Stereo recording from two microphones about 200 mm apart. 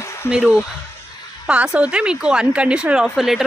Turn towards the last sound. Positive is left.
turn(degrees=0)  # may be behind; listen again after turning